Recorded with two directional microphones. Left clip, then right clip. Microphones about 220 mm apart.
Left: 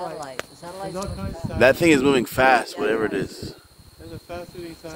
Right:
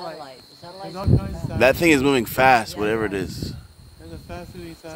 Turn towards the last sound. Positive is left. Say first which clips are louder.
# left 2 dB
turn(degrees=-45)  # may be behind; listen again after turning